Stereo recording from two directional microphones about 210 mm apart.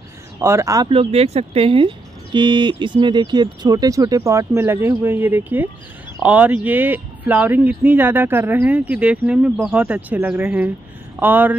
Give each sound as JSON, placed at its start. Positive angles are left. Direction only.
{"t": 0.4, "sound": "speech", "side_deg": -15}